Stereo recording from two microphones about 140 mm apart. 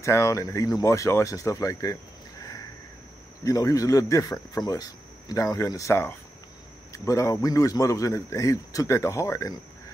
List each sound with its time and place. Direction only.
0.0 s a man's voice: 20° left (ahead or behind)
3.4 s a man's voice: 25° left (ahead or behind)